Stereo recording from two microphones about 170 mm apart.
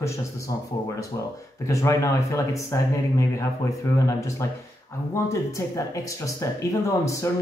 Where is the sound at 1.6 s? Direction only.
15° left (ahead or behind).